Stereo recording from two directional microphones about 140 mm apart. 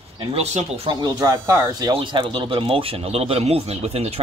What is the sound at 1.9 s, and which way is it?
Speech, 35° right (ahead or behind).